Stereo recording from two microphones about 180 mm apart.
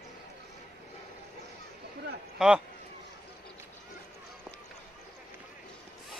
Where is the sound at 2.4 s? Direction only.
5° right (ahead or behind).